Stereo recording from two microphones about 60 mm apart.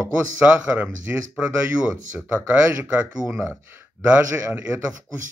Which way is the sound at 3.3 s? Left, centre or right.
Right.